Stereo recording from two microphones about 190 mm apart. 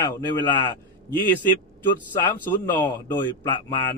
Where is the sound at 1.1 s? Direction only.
10° left (ahead or behind).